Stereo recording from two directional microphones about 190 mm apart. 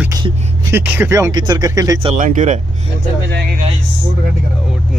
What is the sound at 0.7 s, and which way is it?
Speech, 10° right (ahead or behind).